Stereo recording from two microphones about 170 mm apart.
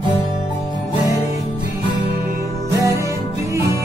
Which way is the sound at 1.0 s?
20° left (ahead or behind).